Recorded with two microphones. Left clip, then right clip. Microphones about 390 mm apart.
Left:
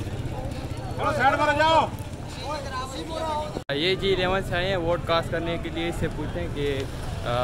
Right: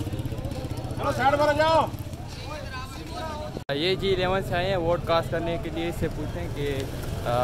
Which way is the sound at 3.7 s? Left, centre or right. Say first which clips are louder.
Left 1 dB; centre.